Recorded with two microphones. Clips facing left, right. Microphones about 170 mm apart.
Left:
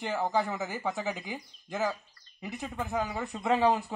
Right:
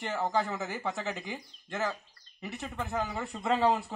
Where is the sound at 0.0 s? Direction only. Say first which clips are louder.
Left 1 dB; 5° left (ahead or behind).